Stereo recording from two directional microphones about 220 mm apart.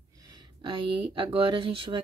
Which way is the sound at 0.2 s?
20° right (ahead or behind).